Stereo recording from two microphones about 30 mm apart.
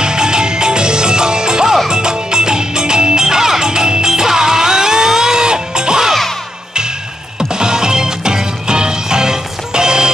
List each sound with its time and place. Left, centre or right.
0.0 s music: right
7.5 s music: right